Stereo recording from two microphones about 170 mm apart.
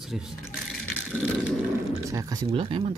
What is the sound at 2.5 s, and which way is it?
Speech, 30° right (ahead or behind).